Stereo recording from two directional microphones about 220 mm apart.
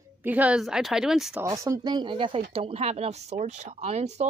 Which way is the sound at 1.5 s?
15° right (ahead or behind).